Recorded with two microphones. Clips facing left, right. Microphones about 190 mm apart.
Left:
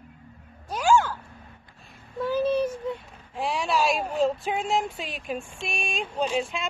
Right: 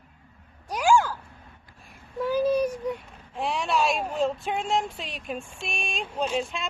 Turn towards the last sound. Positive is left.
turn(degrees=0)  # may be behind; listen again after turning